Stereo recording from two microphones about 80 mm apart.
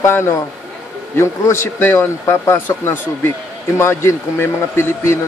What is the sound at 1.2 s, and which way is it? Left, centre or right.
A man's voice, left.